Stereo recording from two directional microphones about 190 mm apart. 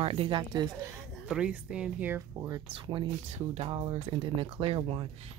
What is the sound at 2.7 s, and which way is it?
Speech, 25° right (ahead or behind).